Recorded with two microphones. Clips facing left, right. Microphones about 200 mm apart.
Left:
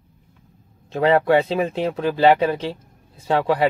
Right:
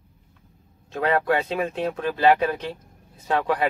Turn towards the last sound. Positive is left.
turn(degrees=30)  # may be behind; listen again after turning